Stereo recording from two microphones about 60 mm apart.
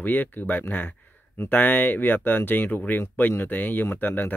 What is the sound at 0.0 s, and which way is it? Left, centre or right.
Speech, left.